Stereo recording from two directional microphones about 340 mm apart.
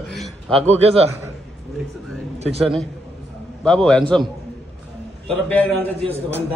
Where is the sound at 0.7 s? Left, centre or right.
Centre.